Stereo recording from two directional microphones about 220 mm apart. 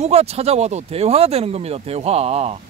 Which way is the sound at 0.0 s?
30° right (ahead or behind).